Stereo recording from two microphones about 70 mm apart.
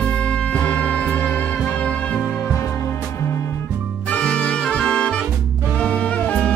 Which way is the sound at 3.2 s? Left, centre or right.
Left.